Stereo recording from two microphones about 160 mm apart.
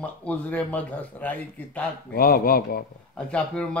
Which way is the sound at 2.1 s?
65° left (ahead or behind).